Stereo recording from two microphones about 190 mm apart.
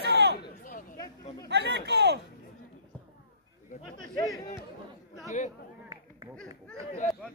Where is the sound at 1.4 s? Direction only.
65° right (ahead or behind).